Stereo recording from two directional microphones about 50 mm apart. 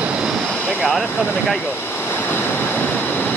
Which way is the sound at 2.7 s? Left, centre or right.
Left.